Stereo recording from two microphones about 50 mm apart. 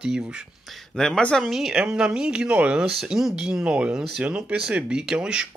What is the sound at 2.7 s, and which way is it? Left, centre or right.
Speech, centre.